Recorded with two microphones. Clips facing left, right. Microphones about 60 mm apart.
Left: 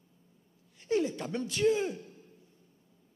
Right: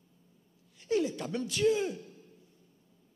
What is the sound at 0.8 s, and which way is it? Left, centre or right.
A man's voice, left.